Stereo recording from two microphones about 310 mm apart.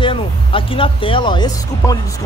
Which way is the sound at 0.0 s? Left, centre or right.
Centre.